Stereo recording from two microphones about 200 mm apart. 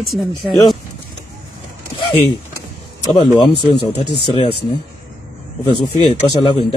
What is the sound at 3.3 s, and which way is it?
Speech, 25° left (ahead or behind).